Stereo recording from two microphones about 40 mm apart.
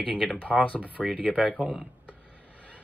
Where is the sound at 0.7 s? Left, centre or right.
Right.